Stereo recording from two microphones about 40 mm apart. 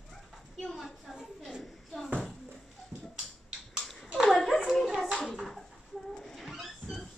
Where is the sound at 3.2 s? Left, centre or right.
Centre.